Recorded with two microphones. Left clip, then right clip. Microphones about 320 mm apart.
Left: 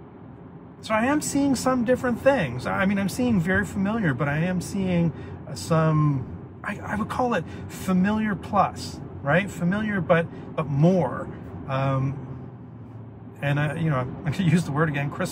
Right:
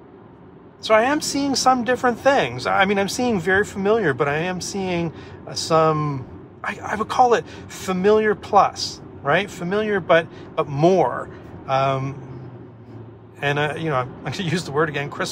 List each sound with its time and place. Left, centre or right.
0.8 s speech: centre
11.6 s speech: centre
13.4 s speech: centre